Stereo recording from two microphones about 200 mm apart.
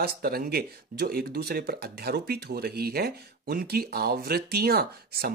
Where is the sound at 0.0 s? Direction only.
50° right (ahead or behind).